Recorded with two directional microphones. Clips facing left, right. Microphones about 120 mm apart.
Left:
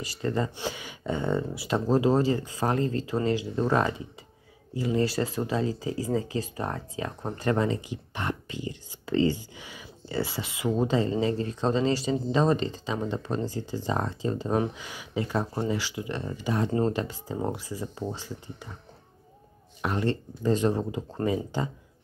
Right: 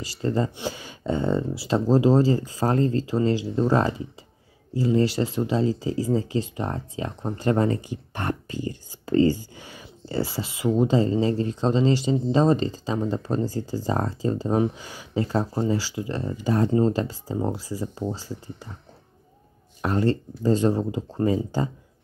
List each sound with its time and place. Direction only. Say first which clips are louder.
0.0 s speech: right 4 dB; 30° right (ahead or behind)
7.6 s speech: right 4 dB; 45° right (ahead or behind)
19.8 s speech: right 5 dB; 35° right (ahead or behind)